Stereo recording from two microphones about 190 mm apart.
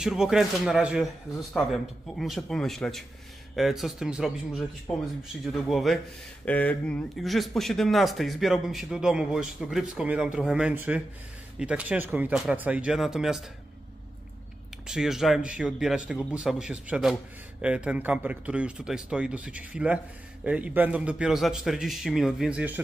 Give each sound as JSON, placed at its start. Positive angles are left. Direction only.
{"t": 0.0, "sound": "speech", "side_deg": -5}
{"t": 14.9, "sound": "speech", "side_deg": -5}